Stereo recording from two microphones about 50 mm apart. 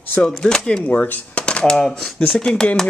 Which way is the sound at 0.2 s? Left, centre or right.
Centre.